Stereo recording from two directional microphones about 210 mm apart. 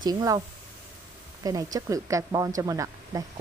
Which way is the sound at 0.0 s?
15° right (ahead or behind).